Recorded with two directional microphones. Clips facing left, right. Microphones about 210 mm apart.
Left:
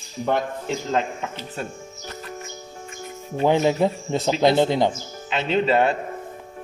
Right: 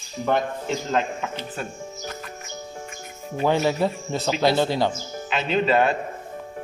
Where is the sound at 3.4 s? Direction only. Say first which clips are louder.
Left 2 dB; 20° left (ahead or behind).